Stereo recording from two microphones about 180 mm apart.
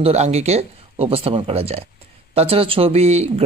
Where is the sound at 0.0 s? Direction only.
35° right (ahead or behind).